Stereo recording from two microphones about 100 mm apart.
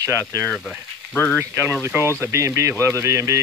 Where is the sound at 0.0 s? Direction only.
30° right (ahead or behind).